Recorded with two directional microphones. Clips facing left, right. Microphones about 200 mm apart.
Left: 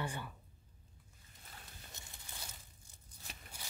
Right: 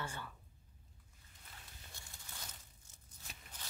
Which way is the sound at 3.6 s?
10° left (ahead or behind).